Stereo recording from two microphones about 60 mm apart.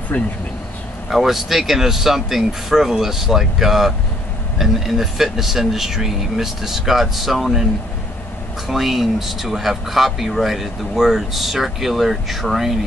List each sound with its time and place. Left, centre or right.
0.1 s speech: left
1.1 s speech: centre
8.6 s speech: centre